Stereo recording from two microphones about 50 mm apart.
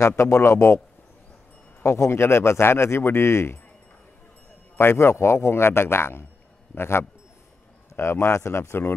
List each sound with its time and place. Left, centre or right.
0.0 s speech: left
1.8 s speech: left
4.7 s a man's voice: left
8.4 s speech: left